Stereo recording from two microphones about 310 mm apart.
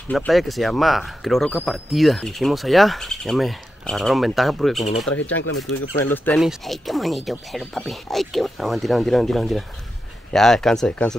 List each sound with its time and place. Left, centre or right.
0.1 s speech: centre
5.3 s speech: left
6.1 s speech: centre